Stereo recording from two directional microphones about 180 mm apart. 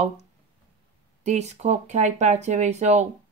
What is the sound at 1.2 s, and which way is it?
Speech, 40° right (ahead or behind).